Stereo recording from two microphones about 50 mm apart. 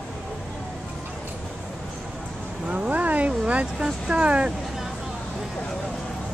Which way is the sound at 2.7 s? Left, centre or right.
Right.